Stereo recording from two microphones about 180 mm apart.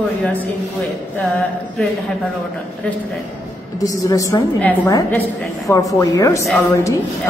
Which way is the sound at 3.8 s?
20° left (ahead or behind).